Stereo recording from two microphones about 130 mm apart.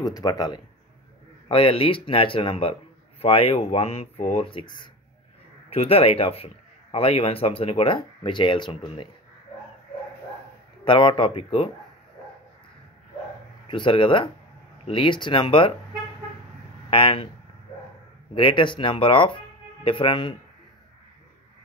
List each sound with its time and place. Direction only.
0.0 s speech: 30° left (ahead or behind)
1.5 s a man's voice: 45° left (ahead or behind)
10.9 s speech: 40° left (ahead or behind)
13.7 s speech: 40° left (ahead or behind)
16.9 s a man's voice: 45° left (ahead or behind)
18.3 s speech: 40° left (ahead or behind)